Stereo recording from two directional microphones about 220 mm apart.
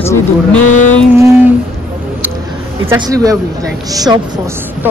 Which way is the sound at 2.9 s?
15° right (ahead or behind).